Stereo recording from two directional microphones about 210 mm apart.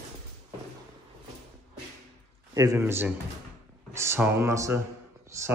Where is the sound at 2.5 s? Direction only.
15° right (ahead or behind).